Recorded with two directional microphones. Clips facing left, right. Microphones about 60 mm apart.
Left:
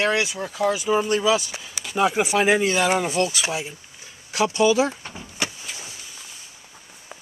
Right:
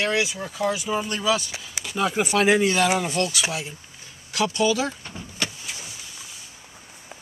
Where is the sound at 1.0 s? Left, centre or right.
Centre.